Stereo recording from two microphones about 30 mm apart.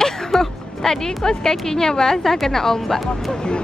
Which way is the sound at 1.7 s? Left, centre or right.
Centre.